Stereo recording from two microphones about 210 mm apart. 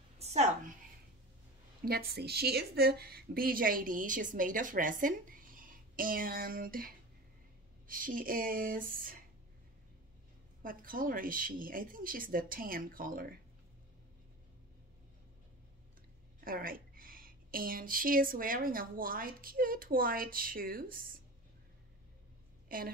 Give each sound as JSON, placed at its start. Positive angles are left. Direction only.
{"t": 0.2, "sound": "a sound", "side_deg": -30}
{"t": 1.9, "sound": "a woman's voice", "side_deg": -50}
{"t": 10.6, "sound": "speech", "side_deg": -40}
{"t": 16.4, "sound": "a woman's voice", "side_deg": -45}
{"t": 22.7, "sound": "a woman's voice", "side_deg": -45}